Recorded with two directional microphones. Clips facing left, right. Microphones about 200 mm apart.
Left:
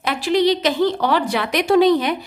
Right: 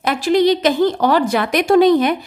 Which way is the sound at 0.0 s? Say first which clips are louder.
Right 3 dB; 45° right (ahead or behind).